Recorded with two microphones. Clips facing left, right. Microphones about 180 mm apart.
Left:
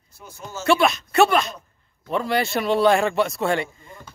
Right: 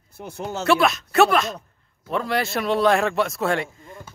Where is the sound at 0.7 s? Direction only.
Centre (ahead or behind).